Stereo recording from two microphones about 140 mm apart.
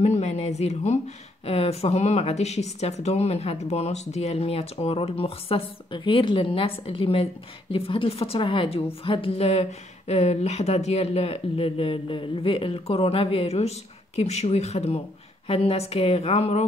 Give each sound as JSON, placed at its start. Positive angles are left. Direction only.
{"t": 0.0, "sound": "a woman's voice", "side_deg": 50}